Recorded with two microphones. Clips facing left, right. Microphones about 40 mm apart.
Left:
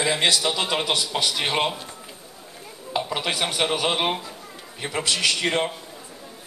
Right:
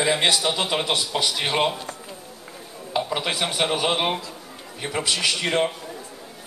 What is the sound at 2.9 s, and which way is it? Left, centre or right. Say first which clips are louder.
A man's voice: right 1 dB; centre.